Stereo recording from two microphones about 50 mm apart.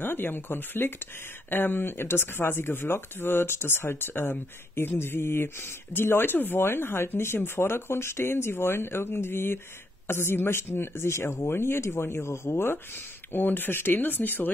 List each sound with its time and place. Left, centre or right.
0.0 s speech: left